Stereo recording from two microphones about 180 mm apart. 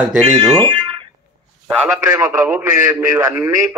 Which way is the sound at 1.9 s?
10° right (ahead or behind).